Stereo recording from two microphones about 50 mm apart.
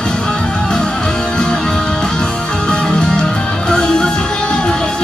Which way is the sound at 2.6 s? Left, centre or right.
Centre.